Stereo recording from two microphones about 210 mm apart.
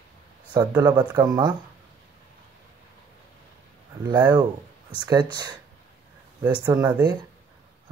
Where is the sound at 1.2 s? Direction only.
20° right (ahead or behind).